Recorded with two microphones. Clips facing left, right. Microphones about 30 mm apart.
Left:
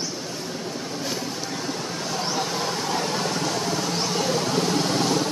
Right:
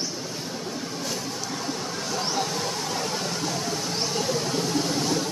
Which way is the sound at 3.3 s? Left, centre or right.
Left.